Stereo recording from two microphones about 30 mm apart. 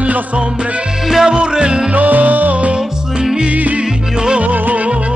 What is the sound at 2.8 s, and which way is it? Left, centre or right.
Music, right.